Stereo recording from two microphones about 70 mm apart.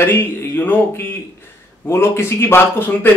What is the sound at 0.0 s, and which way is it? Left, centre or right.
A man's voice, left.